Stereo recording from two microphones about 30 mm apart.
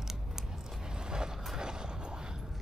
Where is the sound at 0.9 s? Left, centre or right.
Right.